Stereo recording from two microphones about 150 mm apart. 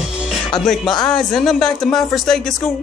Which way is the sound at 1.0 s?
Centre (ahead or behind).